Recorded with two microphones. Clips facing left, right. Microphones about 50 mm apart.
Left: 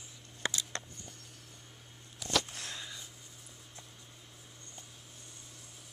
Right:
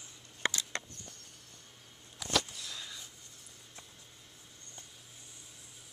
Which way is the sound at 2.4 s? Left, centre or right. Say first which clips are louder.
Left 2 dB; left.